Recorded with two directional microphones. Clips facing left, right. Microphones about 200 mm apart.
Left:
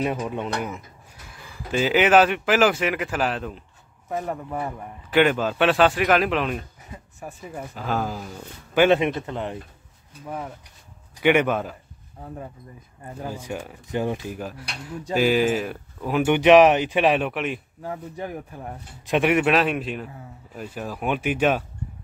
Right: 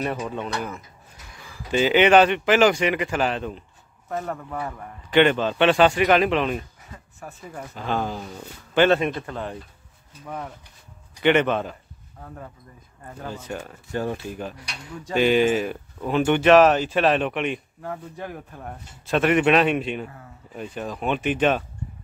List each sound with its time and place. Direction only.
0.0 s speech: 15° left (ahead or behind)
1.7 s speech: centre (ahead or behind)
4.1 s speech: 15° left (ahead or behind)
5.1 s speech: 5° left (ahead or behind)
6.9 s speech: 15° left (ahead or behind)
10.2 s speech: 5° left (ahead or behind)
13.2 s speech: 10° left (ahead or behind)